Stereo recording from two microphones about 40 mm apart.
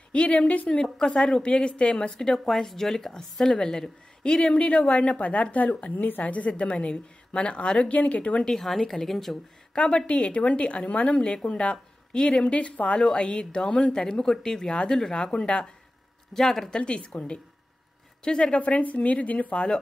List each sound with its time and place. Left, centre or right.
0.1 s speech: left
1.0 s a woman's voice: centre
1.5 s speech: left
4.6 s a woman's voice: left
7.9 s speech: left
8.5 s speech: centre
9.8 s a woman's voice: left
15.3 s a woman's voice: left
16.3 s speech: centre
16.7 s a woman's voice: left
18.6 s speech: left